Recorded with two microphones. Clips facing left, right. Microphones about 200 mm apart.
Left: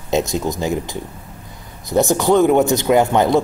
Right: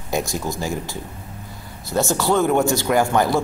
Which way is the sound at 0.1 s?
20° left (ahead or behind).